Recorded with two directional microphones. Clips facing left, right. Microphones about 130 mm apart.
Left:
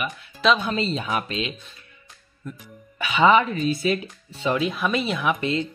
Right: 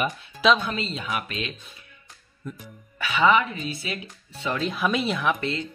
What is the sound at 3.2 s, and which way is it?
Speech, 35° left (ahead or behind).